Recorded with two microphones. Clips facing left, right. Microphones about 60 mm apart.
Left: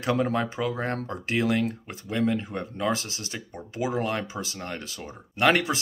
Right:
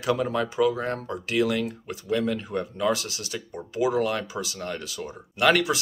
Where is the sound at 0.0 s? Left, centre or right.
Left.